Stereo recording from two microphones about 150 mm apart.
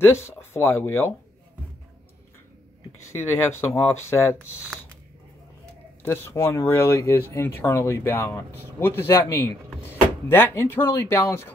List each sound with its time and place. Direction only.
0.1 s speech: 15° left (ahead or behind)
3.1 s speech: 15° left (ahead or behind)
6.0 s speech: 15° left (ahead or behind)